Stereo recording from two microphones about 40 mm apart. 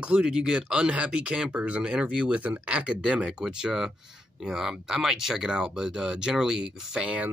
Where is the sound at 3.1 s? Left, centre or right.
Centre.